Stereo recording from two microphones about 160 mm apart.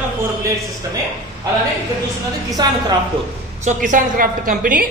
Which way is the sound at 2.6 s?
30° right (ahead or behind).